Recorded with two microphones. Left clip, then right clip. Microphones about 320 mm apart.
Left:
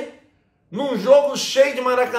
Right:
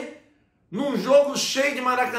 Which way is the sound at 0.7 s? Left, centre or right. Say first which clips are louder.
Left 6 dB; centre.